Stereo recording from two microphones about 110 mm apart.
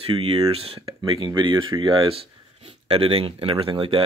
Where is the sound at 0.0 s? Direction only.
65° right (ahead or behind).